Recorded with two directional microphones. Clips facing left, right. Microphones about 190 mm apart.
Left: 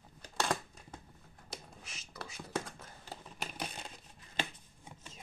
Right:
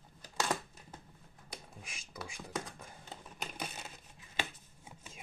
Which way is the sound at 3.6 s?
5° right (ahead or behind).